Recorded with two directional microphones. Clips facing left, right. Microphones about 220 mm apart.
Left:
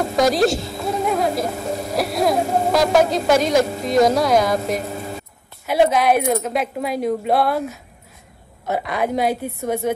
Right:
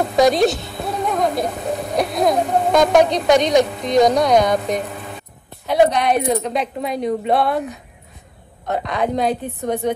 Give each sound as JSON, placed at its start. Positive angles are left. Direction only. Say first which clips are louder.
{"t": 0.3, "sound": "speech", "louder": "right 1 dB", "side_deg": 0}
{"t": 4.8, "sound": "vehicle", "louder": "left 3 dB", "side_deg": 40}
{"t": 5.7, "sound": "speech", "louder": "even", "side_deg": 5}